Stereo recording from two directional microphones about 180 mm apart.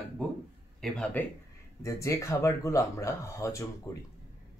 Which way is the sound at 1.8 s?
15° left (ahead or behind).